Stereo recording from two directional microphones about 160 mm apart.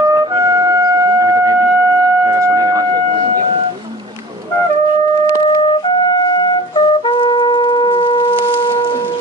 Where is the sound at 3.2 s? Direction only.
40° right (ahead or behind).